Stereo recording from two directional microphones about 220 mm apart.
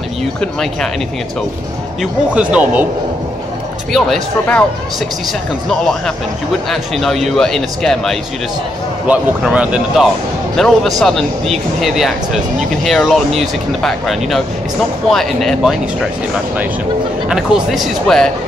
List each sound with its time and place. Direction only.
0.4 s speech: centre (ahead or behind)
2.0 s speech: 5° right (ahead or behind)
3.9 s speech: 5° left (ahead or behind)
5.7 s speech: 5° left (ahead or behind)
17.3 s speech: centre (ahead or behind)